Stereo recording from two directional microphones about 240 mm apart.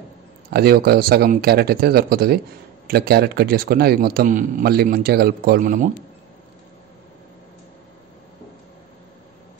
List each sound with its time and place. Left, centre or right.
0.5 s a man's voice: right